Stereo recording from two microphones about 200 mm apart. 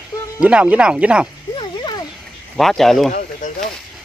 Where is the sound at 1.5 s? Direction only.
20° left (ahead or behind).